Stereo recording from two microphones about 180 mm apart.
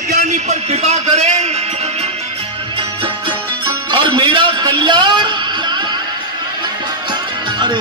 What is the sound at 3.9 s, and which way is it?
A man's voice, 25° right (ahead or behind).